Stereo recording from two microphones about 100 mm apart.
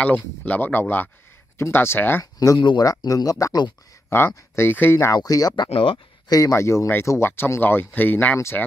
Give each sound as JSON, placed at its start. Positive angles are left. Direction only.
{"t": 0.0, "sound": "speech", "side_deg": 15}
{"t": 2.3, "sound": "speech", "side_deg": 40}
{"t": 4.6, "sound": "speech", "side_deg": 20}
{"t": 5.1, "sound": "speech", "side_deg": 40}
{"t": 5.7, "sound": "speech", "side_deg": 60}
{"t": 6.2, "sound": "speech", "side_deg": 40}
{"t": 6.5, "sound": "speech", "side_deg": 30}